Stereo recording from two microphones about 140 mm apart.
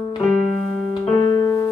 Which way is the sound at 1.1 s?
20° left (ahead or behind).